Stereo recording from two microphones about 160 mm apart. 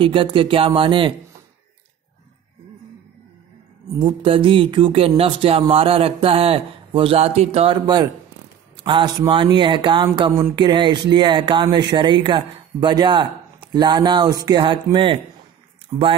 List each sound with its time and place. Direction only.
0.0 s speech: 30° right (ahead or behind)
3.8 s speech: 30° right (ahead or behind)